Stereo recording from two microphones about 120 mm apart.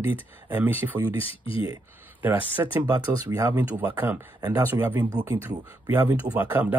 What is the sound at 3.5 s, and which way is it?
Speech, 15° right (ahead or behind).